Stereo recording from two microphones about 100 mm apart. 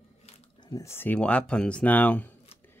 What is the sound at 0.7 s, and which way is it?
Speech, 25° left (ahead or behind).